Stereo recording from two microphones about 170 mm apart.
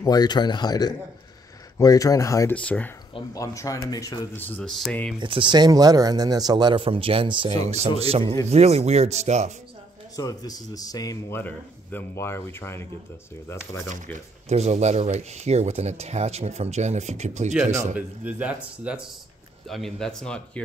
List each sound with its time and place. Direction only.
0.0 s speech: 25° left (ahead or behind)
3.3 s speech: 20° left (ahead or behind)
4.4 s speech: 10° left (ahead or behind)
5.2 s a man's voice: 30° right (ahead or behind)
10.1 s speech: 20° left (ahead or behind)
14.5 s speech: 40° right (ahead or behind)
17.9 s speech: 10° right (ahead or behind)